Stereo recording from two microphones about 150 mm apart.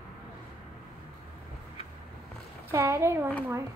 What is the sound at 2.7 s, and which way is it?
Speech, 20° right (ahead or behind).